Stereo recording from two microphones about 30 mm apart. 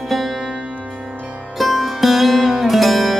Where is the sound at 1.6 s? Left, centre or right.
Centre.